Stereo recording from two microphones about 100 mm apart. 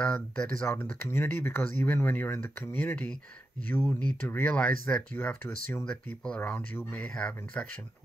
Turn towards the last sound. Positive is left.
turn(degrees=10)  # may be behind; listen again after turning